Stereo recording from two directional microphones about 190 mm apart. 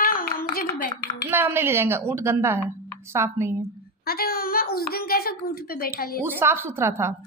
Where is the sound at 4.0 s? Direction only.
55° left (ahead or behind).